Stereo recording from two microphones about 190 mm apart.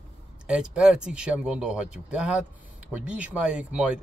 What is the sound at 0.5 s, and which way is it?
Speech, 5° right (ahead or behind).